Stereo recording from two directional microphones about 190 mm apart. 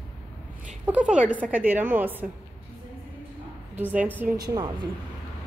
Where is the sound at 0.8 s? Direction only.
5° right (ahead or behind).